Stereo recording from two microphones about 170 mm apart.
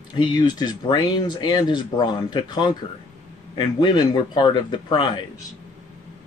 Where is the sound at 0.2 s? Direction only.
25° left (ahead or behind).